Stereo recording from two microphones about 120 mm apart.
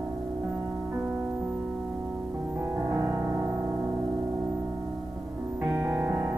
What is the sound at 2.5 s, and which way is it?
Music, 20° right (ahead or behind).